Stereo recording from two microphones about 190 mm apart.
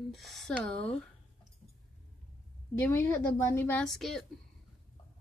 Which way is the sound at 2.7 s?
10° left (ahead or behind).